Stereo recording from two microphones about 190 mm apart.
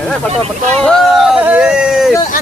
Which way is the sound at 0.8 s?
5° right (ahead or behind).